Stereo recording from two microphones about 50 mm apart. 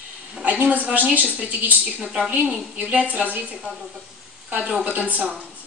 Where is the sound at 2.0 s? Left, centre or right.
Centre.